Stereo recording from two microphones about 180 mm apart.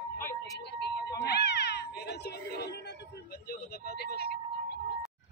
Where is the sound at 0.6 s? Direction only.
65° left (ahead or behind).